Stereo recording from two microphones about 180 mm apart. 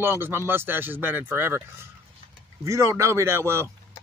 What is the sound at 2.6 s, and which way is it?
Speech, 15° right (ahead or behind).